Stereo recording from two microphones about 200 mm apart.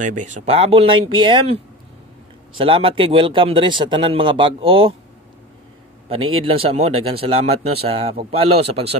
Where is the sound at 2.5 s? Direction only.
25° right (ahead or behind).